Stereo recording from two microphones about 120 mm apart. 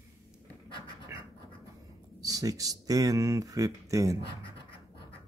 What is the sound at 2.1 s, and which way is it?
Speech, 30° right (ahead or behind).